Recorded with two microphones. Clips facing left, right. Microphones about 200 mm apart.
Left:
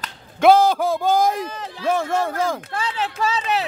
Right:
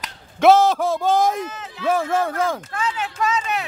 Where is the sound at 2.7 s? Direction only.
30° left (ahead or behind).